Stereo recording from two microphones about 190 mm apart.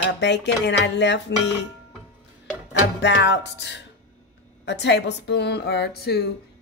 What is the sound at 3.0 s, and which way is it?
Speech, 65° left (ahead or behind).